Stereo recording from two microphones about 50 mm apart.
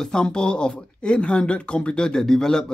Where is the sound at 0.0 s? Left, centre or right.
Centre.